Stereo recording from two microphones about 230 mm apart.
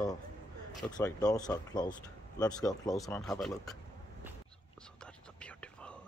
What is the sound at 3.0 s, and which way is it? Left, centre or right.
Speech, centre.